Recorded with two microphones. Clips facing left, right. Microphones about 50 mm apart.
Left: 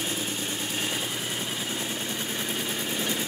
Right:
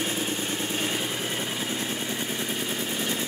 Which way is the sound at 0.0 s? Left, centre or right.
Right.